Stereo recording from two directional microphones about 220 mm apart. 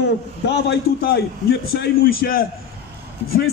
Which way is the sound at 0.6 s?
50° left (ahead or behind).